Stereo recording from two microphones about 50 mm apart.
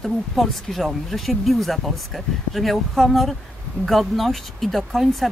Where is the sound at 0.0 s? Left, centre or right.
Centre.